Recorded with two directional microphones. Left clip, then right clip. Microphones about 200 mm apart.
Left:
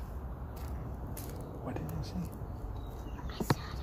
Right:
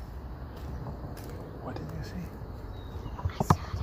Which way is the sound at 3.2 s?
35° left (ahead or behind).